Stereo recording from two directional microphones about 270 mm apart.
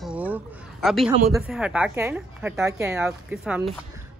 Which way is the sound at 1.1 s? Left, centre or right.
Centre.